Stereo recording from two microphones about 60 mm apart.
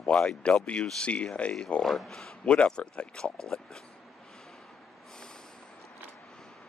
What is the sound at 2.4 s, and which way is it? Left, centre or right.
Speech, centre.